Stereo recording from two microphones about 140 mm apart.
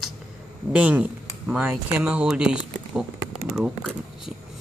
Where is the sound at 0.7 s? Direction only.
10° right (ahead or behind).